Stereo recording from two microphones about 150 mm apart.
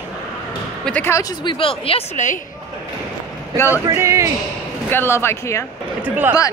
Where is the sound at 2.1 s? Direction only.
55° left (ahead or behind).